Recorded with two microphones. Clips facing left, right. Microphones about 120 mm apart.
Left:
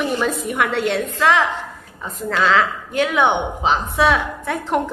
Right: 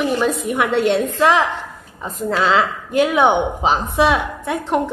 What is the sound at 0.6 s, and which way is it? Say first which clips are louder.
Speech: right 4 dB; 20° right (ahead or behind).